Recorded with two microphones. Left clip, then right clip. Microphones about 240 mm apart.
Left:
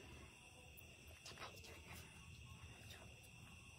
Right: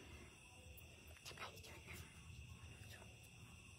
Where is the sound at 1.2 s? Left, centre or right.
Right.